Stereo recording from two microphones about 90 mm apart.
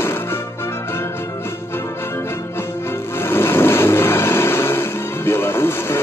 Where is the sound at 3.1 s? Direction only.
25° left (ahead or behind).